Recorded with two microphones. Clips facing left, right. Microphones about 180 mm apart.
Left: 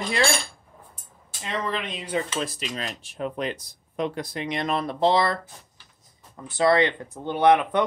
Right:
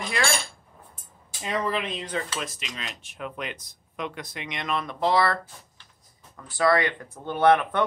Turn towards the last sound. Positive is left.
turn(degrees=15)  # may be behind; listen again after turning